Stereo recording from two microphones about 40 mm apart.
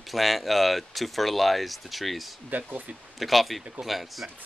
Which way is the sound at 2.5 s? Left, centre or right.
Right.